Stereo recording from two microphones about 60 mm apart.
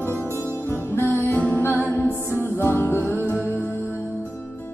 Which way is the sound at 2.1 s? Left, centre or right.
Left.